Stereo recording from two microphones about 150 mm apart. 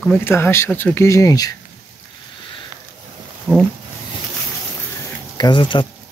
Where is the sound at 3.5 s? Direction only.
15° right (ahead or behind).